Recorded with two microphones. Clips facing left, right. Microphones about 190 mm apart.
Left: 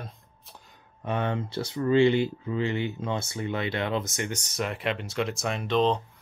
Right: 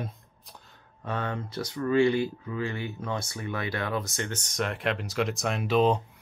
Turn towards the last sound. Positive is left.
turn(degrees=-5)  # may be behind; listen again after turning